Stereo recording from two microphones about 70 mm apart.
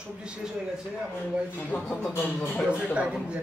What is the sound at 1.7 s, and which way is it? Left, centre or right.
Music, left.